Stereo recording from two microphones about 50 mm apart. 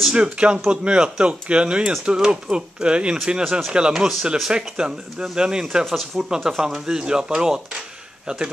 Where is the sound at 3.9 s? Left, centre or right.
Centre.